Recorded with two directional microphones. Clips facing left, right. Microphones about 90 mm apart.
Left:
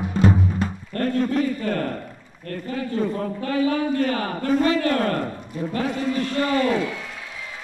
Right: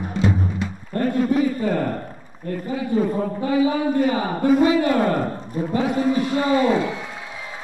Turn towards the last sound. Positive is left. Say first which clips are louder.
# right 3 dB
turn(degrees=-20)  # may be behind; listen again after turning